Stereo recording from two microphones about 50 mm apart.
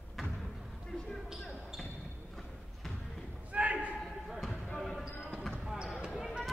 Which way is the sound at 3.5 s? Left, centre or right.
Right.